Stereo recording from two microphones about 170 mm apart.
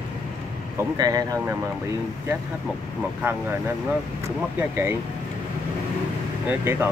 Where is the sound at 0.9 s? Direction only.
20° right (ahead or behind).